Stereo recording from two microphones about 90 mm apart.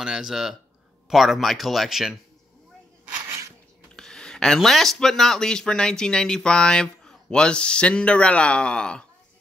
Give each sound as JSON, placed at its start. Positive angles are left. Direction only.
{"t": 0.0, "sound": "speech", "side_deg": -5}
{"t": 3.3, "sound": "a sound", "side_deg": -30}
{"t": 3.9, "sound": "speech", "side_deg": 5}